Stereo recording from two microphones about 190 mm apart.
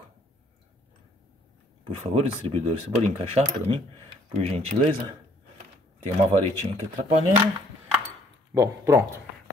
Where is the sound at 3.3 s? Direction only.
30° right (ahead or behind).